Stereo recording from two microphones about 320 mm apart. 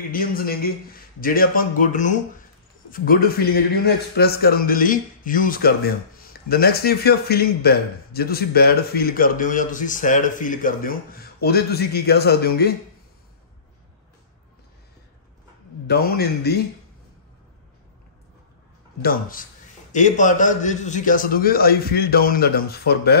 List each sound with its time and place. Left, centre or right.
0.1 s a man's voice: left
15.9 s a man's voice: left
18.9 s a man's voice: left